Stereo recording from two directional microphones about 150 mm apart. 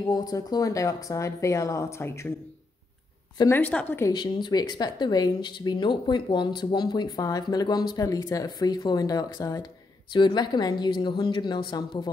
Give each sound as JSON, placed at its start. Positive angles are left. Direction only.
{"t": 0.0, "sound": "speech", "side_deg": 25}
{"t": 3.3, "sound": "a woman's voice", "side_deg": 15}
{"t": 4.1, "sound": "speech", "side_deg": 30}